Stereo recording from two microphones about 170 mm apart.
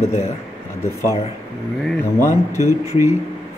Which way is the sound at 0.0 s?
40° left (ahead or behind).